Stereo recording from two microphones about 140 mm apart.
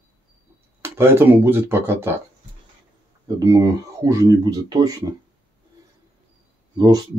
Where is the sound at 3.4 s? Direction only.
25° right (ahead or behind).